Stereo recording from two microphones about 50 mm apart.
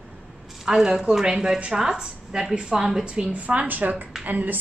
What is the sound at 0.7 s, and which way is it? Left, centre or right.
A woman's voice, centre.